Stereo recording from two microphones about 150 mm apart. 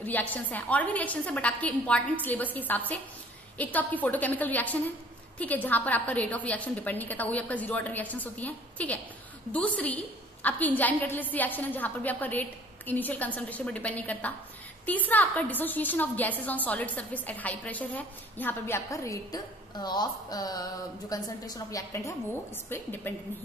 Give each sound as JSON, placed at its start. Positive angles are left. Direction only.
{"t": 0.0, "sound": "a woman's voice", "side_deg": 10}